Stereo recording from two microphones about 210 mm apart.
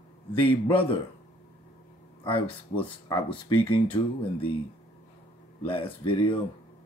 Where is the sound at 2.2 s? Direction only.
25° left (ahead or behind).